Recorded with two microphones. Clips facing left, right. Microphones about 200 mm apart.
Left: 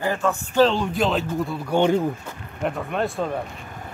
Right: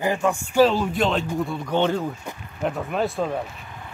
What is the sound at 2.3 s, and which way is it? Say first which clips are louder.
Speech: right 2 dB; 15° right (ahead or behind).